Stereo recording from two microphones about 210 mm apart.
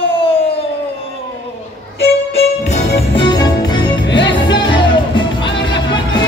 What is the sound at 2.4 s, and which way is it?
Music, 30° left (ahead or behind).